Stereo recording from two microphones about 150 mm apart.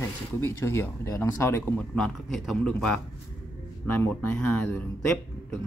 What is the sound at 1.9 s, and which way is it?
A man's voice, centre (ahead or behind).